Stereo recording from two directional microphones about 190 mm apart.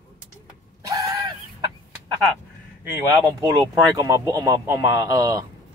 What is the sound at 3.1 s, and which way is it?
Speech, 20° right (ahead or behind).